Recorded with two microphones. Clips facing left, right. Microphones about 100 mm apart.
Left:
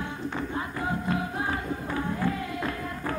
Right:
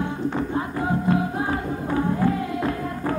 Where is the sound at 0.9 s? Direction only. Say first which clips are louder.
Right 7 dB; 30° right (ahead or behind).